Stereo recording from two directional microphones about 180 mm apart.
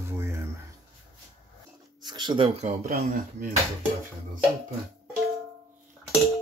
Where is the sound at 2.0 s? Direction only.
25° right (ahead or behind).